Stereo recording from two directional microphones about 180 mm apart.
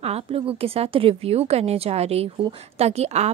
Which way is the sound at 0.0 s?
35° right (ahead or behind).